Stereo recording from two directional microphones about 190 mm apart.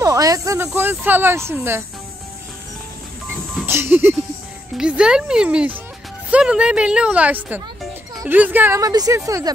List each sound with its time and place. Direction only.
0.0 s speech: 20° right (ahead or behind)
3.5 s a sound: 10° right (ahead or behind)
4.7 s speech: 5° right (ahead or behind)